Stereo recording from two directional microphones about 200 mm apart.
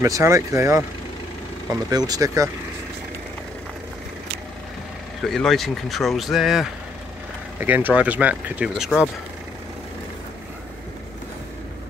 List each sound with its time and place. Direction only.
0.0 s speech: 15° right (ahead or behind)
1.9 s speech: 20° right (ahead or behind)
5.2 s speech: centre (ahead or behind)